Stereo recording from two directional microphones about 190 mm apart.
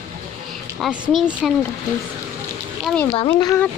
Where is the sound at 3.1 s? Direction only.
25° left (ahead or behind).